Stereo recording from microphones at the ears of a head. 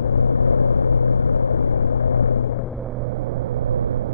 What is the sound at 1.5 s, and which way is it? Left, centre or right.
Vehicle, left.